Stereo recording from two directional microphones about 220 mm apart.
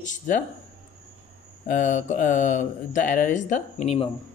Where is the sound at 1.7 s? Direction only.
35° left (ahead or behind).